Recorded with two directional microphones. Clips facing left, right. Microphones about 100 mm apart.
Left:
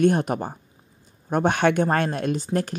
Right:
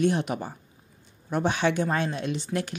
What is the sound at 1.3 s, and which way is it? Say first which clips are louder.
Speech: left 5 dB; 55° left (ahead or behind).